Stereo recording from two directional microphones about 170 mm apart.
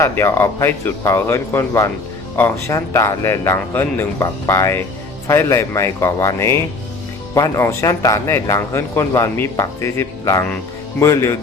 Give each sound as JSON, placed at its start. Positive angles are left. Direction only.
{"t": 0.0, "sound": "speech", "side_deg": 15}